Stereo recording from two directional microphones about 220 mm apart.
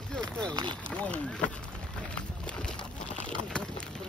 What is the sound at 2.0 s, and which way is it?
Boat, 5° left (ahead or behind).